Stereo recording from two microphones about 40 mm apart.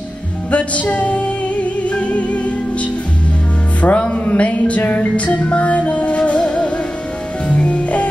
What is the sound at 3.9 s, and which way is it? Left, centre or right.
Music, left.